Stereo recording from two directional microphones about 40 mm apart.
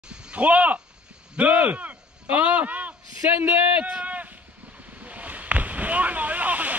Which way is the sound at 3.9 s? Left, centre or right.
Right.